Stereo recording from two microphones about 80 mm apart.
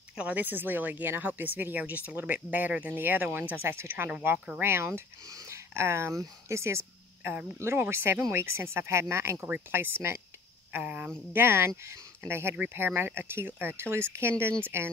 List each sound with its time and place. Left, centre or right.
0.1 s speech: centre
5.3 s a sound: right
5.8 s speech: right
10.7 s speech: centre
11.3 s speech: right